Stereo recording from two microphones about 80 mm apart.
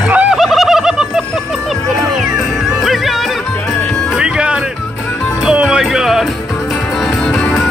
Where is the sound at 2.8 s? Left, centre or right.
Centre.